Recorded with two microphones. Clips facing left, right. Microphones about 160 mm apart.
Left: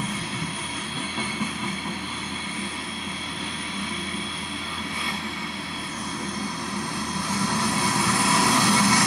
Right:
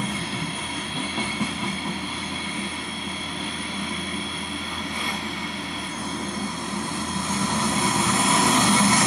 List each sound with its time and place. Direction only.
7.4 s vehicle: 20° right (ahead or behind)